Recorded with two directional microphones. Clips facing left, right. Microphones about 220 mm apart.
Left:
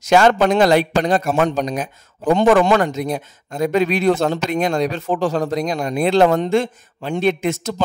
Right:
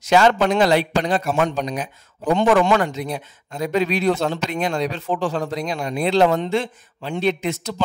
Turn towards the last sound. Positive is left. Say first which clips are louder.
# left 3 dB
turn(degrees=50)  # may be behind; listen again after turning